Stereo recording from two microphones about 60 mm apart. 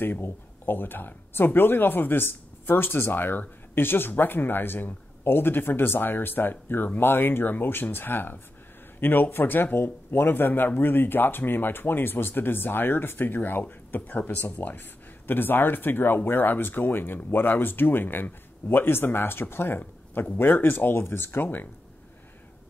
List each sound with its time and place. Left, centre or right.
0.0 s speech: left